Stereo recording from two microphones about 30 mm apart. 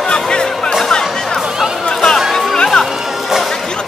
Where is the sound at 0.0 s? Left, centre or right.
Left.